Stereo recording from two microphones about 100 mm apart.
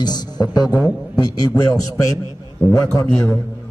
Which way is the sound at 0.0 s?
40° left (ahead or behind).